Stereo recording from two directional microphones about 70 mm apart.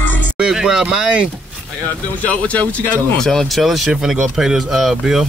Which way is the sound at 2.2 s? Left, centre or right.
Centre.